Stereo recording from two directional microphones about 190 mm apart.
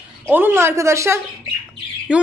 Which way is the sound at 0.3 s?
10° right (ahead or behind).